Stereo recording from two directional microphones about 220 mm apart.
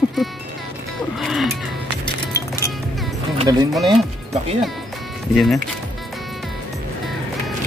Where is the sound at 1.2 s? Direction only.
Centre (ahead or behind).